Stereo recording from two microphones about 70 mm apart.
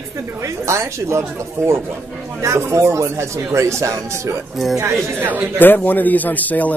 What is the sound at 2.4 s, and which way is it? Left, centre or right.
Speech, right.